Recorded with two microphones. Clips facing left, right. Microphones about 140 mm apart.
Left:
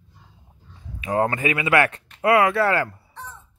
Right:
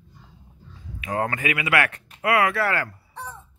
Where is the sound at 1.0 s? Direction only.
25° left (ahead or behind).